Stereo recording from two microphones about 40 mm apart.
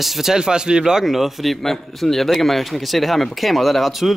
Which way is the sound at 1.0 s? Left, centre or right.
Centre.